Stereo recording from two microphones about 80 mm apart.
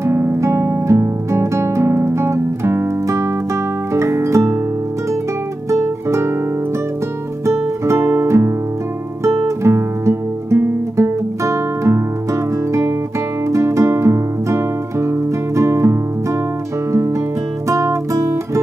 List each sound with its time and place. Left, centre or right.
0.0 s music: right
5.7 s guitar: right
7.4 s music: right
9.6 s music: right
13.5 s music: right
17.6 s music: right